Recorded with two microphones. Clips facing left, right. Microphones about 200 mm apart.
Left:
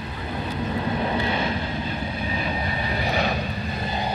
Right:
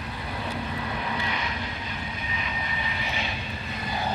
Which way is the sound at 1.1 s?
30° left (ahead or behind).